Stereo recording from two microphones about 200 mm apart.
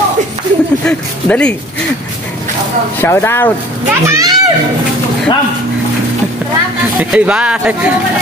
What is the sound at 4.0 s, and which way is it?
Speech, 15° right (ahead or behind).